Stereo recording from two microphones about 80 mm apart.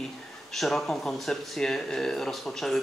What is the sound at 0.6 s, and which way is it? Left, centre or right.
Speech, centre.